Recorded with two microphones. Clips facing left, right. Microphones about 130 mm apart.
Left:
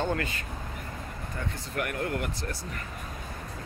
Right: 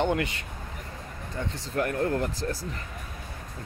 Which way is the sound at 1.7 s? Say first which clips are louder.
Right 5 dB; 30° right (ahead or behind).